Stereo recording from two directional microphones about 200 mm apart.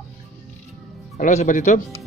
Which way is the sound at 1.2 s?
40° left (ahead or behind).